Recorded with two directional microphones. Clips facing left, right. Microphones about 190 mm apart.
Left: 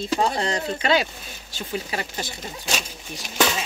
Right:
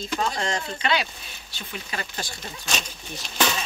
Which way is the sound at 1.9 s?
20° left (ahead or behind).